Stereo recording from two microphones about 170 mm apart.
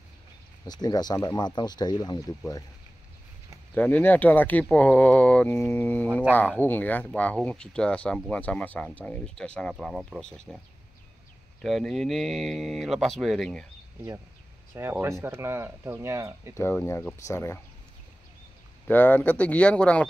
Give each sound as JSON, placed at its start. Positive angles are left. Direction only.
{"t": 0.7, "sound": "speech", "side_deg": 25}
{"t": 3.7, "sound": "speech", "side_deg": 10}
{"t": 11.6, "sound": "speech", "side_deg": 0}
{"t": 14.8, "sound": "speech", "side_deg": -15}
{"t": 16.5, "sound": "speech", "side_deg": 15}
{"t": 18.9, "sound": "speech", "side_deg": 10}